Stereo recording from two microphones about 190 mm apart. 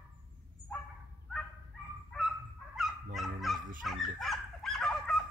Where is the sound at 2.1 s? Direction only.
5° left (ahead or behind).